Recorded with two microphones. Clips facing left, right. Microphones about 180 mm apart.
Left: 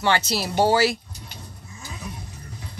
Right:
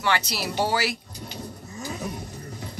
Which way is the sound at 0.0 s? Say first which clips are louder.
Left 3 dB; 25° left (ahead or behind).